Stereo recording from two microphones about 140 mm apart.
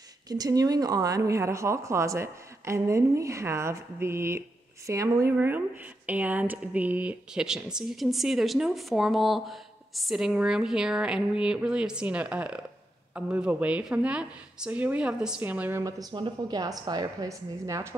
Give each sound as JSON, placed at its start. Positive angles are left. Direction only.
{"t": 0.3, "sound": "a woman's voice", "side_deg": -25}
{"t": 15.8, "sound": "speech", "side_deg": -30}